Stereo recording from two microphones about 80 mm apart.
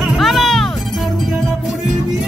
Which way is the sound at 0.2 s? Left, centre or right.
Centre.